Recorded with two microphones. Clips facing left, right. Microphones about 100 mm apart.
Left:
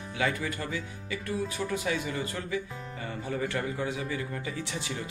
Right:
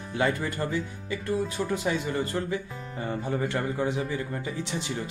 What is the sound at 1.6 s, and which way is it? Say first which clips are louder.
A man's voice: right 3 dB; 25° right (ahead or behind).